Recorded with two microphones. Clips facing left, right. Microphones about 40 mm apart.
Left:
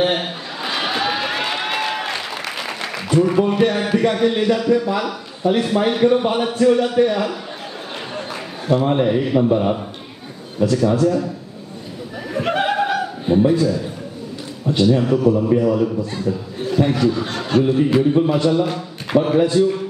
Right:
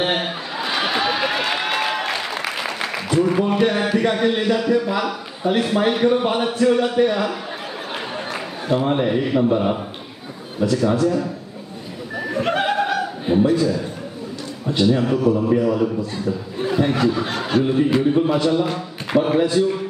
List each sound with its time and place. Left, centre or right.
0.0 s a sound: centre
4.0 s a man's voice: centre
7.9 s a sound: centre
10.8 s a man's voice: centre
12.2 s music: centre
13.3 s a man's voice: centre
14.9 s a man's voice: centre
16.6 s speech: centre
17.1 s a man's voice: centre